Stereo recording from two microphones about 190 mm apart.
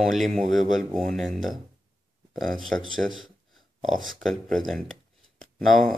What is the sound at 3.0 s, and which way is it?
Speech, centre (ahead or behind).